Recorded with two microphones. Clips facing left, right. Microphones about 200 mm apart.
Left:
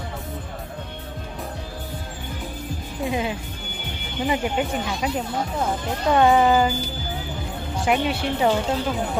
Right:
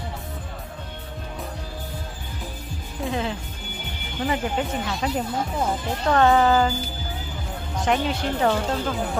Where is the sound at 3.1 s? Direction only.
15° left (ahead or behind).